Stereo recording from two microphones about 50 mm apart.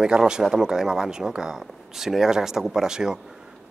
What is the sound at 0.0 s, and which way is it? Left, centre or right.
Speech, centre.